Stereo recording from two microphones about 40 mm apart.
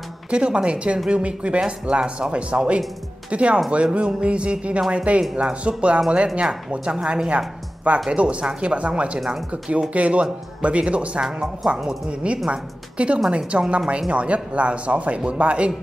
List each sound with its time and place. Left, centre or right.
0.3 s speech: right
1.2 s speech: right
11.1 s a woman's voice: centre